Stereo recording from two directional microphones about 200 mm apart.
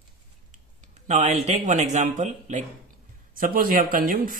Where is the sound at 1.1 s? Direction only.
35° right (ahead or behind).